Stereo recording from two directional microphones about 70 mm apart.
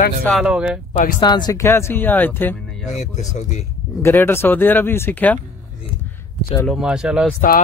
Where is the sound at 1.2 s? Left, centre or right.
Left.